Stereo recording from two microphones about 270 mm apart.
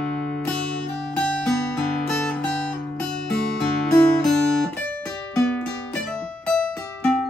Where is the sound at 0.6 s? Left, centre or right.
Centre.